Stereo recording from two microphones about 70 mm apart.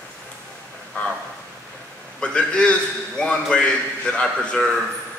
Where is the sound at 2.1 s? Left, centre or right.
Centre.